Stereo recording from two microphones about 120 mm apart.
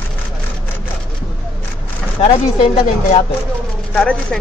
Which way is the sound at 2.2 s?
45° left (ahead or behind).